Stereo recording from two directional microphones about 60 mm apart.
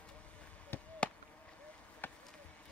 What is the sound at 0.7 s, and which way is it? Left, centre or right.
Chop, left.